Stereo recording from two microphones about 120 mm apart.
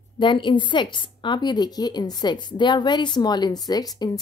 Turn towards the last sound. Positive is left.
turn(degrees=30)  # may be behind; listen again after turning